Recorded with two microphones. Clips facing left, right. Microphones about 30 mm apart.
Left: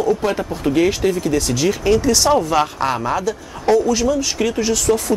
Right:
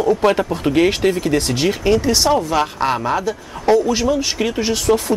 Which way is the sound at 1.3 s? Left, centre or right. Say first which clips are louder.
Even; right.